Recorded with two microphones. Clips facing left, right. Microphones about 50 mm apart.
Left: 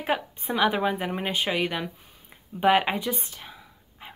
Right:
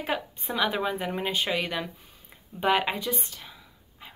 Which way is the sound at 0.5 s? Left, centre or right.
Centre.